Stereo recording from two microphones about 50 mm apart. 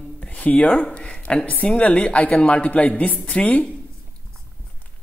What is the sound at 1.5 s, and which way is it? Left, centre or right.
A woman's voice, left.